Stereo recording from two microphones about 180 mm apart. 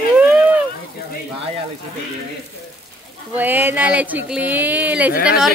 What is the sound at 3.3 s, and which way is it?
Speech, 10° right (ahead or behind).